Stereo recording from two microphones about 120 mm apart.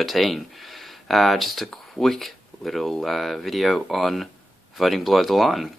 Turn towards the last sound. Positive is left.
turn(degrees=0)  # may be behind; listen again after turning